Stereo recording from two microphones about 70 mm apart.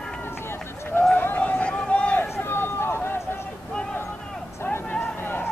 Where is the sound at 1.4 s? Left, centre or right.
Left.